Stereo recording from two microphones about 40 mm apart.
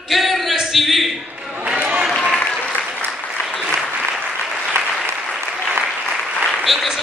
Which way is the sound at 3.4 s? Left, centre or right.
Centre.